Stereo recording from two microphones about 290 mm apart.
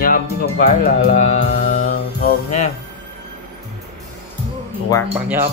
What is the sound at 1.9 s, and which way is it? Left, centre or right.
Music, left.